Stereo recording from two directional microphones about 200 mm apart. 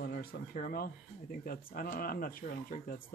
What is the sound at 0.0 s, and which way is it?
Speech, 50° left (ahead or behind).